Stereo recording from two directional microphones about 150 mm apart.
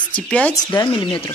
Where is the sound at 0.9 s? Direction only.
35° left (ahead or behind).